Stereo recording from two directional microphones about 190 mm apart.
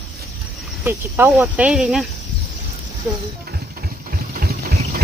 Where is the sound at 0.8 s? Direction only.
10° right (ahead or behind).